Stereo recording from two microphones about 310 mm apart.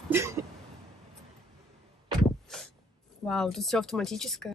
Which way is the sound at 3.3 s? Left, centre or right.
Centre.